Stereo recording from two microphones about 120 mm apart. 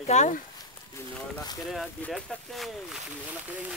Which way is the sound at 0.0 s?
75° left (ahead or behind).